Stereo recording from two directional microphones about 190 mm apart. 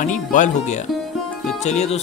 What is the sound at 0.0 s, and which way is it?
Speech, 40° left (ahead or behind).